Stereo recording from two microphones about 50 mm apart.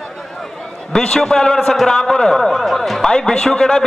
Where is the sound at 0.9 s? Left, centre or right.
Centre.